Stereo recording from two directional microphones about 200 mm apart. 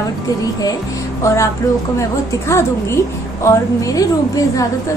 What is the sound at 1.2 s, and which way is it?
A woman's voice, 15° left (ahead or behind).